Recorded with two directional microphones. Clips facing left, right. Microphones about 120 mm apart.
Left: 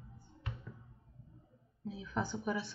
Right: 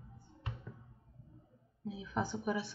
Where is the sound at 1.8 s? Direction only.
15° right (ahead or behind).